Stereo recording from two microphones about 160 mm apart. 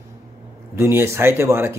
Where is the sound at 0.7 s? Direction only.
15° right (ahead or behind).